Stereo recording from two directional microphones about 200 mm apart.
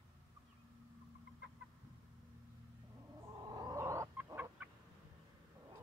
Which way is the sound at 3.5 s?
20° right (ahead or behind).